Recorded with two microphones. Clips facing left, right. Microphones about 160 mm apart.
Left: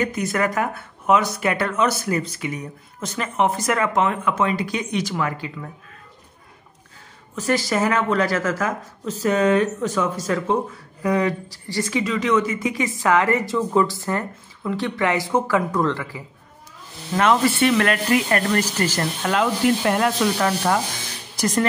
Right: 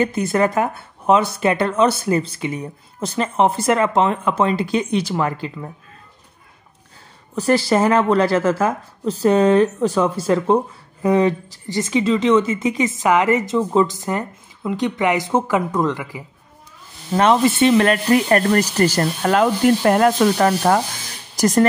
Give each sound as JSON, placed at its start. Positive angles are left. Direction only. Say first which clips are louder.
{"t": 0.0, "sound": "speech", "louder": "right 4 dB", "side_deg": -30}
{"t": 7.3, "sound": "speech", "louder": "right 5 dB", "side_deg": -30}
{"t": 17.1, "sound": "speech", "louder": "right 3 dB", "side_deg": -25}